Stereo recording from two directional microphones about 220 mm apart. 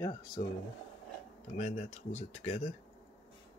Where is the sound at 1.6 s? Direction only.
30° left (ahead or behind).